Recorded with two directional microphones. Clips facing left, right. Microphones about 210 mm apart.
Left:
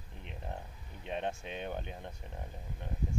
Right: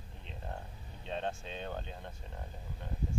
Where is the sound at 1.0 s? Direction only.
15° left (ahead or behind).